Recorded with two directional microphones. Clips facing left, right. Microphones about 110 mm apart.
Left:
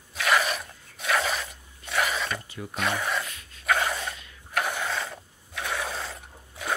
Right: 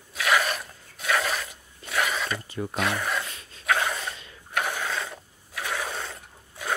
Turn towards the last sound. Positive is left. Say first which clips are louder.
# even
turn(degrees=0)  # may be behind; listen again after turning